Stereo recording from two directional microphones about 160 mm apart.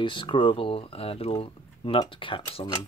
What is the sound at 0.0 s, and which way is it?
Speech, 30° left (ahead or behind).